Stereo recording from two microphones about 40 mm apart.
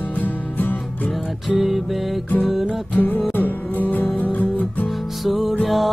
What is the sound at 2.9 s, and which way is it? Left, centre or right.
Music, left.